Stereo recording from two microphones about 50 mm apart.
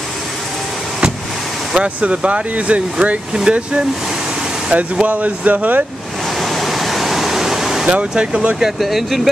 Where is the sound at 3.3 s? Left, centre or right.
Centre.